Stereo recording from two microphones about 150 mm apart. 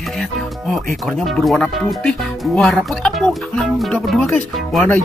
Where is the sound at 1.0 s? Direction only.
5° left (ahead or behind).